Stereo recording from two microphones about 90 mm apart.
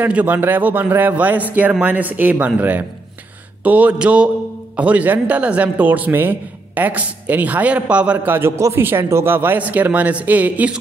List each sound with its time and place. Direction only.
0.0 s a man's voice: 20° right (ahead or behind)